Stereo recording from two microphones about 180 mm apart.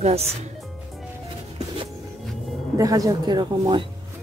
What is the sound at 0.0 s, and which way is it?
Speech, 35° right (ahead or behind).